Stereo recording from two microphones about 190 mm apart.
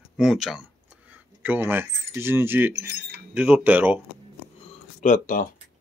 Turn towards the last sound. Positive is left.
turn(degrees=45)  # may be behind; listen again after turning